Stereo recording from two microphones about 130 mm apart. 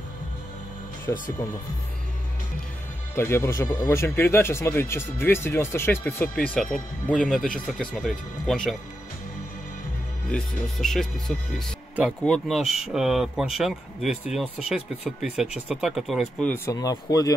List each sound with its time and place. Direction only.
1.1 s speech: 20° left (ahead or behind)
3.2 s speech: 20° left (ahead or behind)
6.3 s speech: 5° left (ahead or behind)
10.3 s speech: 5° left (ahead or behind)
16.4 s speech: 20° left (ahead or behind)